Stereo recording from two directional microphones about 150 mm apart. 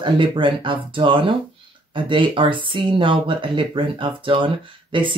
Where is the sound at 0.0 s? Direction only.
35° right (ahead or behind).